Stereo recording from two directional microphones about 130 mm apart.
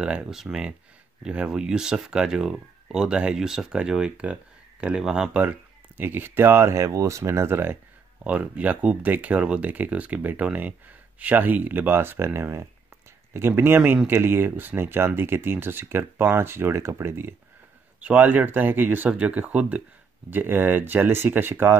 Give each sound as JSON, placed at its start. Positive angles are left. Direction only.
{"t": 0.0, "sound": "speech", "side_deg": -5}